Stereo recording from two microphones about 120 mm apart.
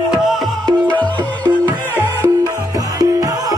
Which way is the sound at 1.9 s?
15° right (ahead or behind).